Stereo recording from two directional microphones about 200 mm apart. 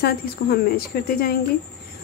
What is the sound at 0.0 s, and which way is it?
Speech, 50° left (ahead or behind).